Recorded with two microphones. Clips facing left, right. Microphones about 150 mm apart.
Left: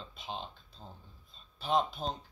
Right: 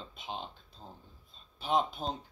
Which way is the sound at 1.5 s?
10° right (ahead or behind).